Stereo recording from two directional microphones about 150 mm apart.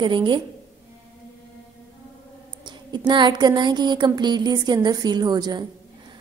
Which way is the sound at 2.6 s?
30° right (ahead or behind).